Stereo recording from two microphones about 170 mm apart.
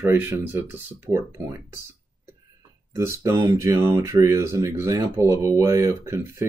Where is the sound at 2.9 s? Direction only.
15° right (ahead or behind).